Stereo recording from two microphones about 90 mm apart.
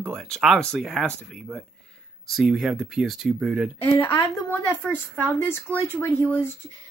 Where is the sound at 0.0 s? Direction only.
5° left (ahead or behind).